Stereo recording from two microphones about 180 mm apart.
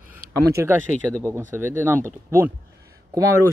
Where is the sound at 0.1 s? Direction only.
15° right (ahead or behind).